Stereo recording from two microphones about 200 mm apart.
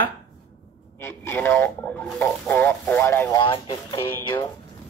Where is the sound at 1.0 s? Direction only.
10° left (ahead or behind).